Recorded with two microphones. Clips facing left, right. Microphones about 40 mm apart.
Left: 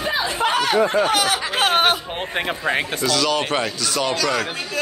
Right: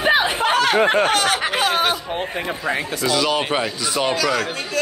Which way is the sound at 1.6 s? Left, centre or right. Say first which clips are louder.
Left 2 dB; left.